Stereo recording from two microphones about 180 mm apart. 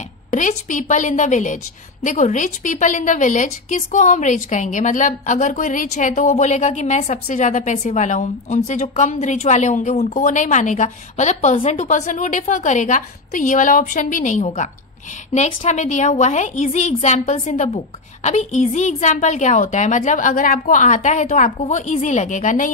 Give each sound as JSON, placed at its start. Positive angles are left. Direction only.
{"t": 0.3, "sound": "a woman's voice", "side_deg": 45}